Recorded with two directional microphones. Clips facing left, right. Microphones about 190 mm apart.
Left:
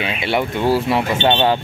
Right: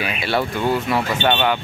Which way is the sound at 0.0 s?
25° left (ahead or behind).